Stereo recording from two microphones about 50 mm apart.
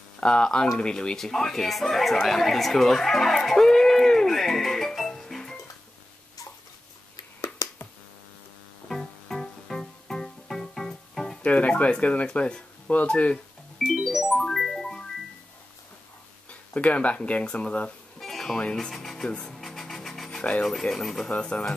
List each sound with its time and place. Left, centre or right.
0.2 s speech: centre
1.1 s speech: centre
8.8 s music: centre
11.4 s speech: left
13.7 s music: centre
16.4 s speech: left
18.2 s music: centre
18.6 s speech: centre
18.9 s music: centre
19.5 s sewing machine: centre
20.9 s speech: centre
21.3 s speech: left